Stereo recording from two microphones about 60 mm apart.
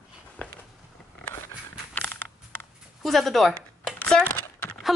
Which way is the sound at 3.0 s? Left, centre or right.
Centre.